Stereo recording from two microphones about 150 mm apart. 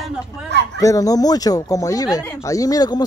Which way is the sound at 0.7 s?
25° left (ahead or behind).